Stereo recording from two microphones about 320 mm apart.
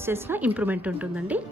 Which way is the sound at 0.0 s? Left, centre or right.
Centre.